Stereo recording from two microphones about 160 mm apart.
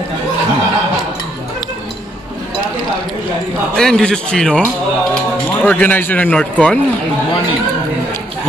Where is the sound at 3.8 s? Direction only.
5° left (ahead or behind).